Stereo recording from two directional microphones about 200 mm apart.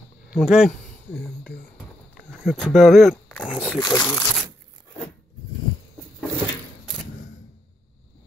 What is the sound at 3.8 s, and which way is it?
Speech, 20° left (ahead or behind).